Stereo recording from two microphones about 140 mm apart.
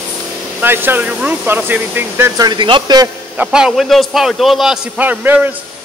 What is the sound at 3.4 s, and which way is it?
A man's voice, 5° right (ahead or behind).